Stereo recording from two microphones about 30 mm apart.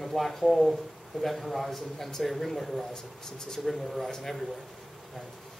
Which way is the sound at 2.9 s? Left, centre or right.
Left.